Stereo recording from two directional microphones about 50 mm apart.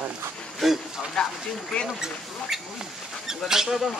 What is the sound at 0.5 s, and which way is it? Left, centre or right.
Speech, centre.